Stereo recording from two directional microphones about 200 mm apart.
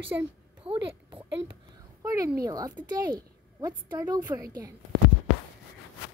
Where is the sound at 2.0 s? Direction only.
15° right (ahead or behind).